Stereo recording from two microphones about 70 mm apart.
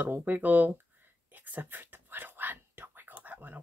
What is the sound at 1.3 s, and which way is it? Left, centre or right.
Whispering, right.